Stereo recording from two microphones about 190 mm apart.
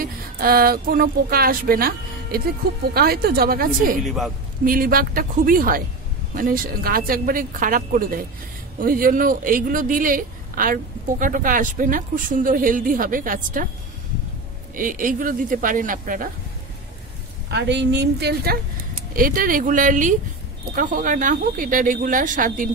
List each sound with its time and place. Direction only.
0.0 s a woman's voice: 50° right (ahead or behind)
4.0 s speech: centre (ahead or behind)
4.6 s speech: 50° right (ahead or behind)
14.8 s speech: 45° right (ahead or behind)
17.5 s a woman's voice: 65° right (ahead or behind); by 22.7 s 45° right (ahead or behind)